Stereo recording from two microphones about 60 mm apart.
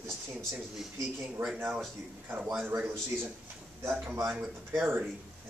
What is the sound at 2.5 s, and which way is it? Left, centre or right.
Speech, right.